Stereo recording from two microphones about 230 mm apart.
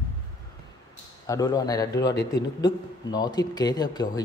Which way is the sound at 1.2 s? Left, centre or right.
Centre.